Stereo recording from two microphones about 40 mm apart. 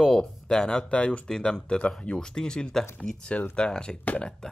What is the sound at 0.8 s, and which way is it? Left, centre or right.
A man's voice, left.